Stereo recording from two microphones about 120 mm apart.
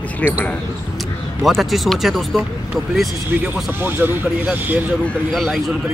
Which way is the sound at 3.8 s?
15° right (ahead or behind).